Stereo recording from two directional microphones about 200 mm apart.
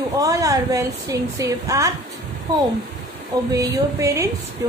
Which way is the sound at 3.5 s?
15° right (ahead or behind).